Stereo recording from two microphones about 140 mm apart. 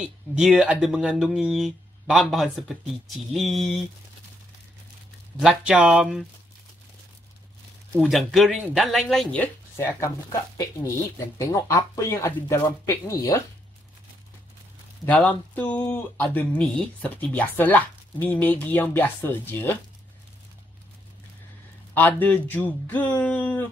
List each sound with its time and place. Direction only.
0.0 s speech: 5° right (ahead or behind)
5.4 s speech: 5° right (ahead or behind)
7.9 s speech: centre (ahead or behind); by 10.1 s 20° left (ahead or behind)
11.3 s speech: 20° left (ahead or behind)
15.0 s speech: 10° left (ahead or behind)
21.9 s speech: 15° left (ahead or behind)